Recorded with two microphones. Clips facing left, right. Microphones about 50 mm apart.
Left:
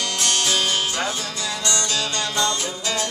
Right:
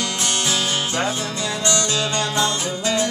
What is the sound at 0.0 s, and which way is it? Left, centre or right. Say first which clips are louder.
Music: even; centre.